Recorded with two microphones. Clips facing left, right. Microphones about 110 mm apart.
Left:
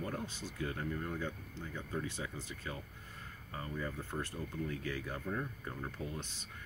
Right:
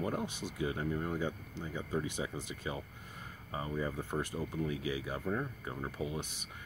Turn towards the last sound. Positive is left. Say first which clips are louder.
# right 4 dB
turn(degrees=-15)  # may be behind; listen again after turning